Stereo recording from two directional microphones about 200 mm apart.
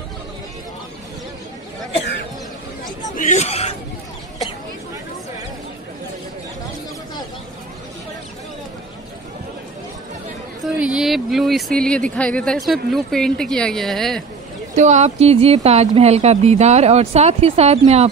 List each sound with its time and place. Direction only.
3.2 s speech: 40° left (ahead or behind)
10.8 s speech: 5° right (ahead or behind)
14.8 s speech: 35° right (ahead or behind)